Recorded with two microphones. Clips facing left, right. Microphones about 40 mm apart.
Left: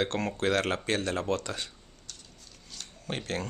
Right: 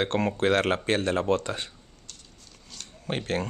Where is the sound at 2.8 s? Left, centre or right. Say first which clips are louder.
Even; centre.